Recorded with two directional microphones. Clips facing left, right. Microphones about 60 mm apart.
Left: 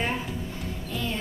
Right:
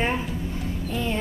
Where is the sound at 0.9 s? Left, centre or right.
Right.